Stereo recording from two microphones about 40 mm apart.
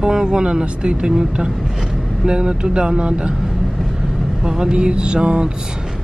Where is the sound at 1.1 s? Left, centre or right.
Centre.